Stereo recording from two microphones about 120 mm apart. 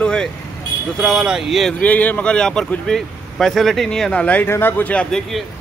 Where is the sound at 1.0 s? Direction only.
5° right (ahead or behind).